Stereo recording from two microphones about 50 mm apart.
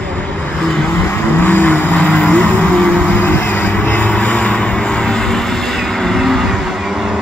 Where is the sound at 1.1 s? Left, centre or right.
Left.